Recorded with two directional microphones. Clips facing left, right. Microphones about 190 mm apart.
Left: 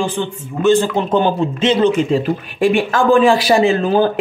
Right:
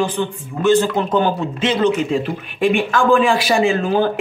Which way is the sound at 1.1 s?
25° left (ahead or behind).